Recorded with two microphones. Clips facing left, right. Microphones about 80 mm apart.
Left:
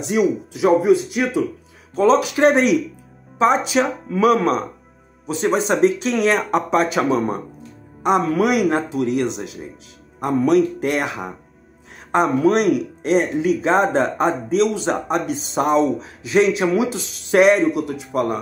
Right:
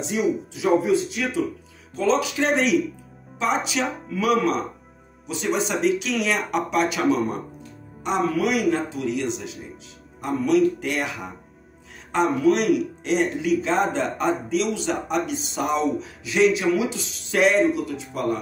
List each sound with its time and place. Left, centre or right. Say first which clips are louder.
0.0 s speech: left 5 dB; left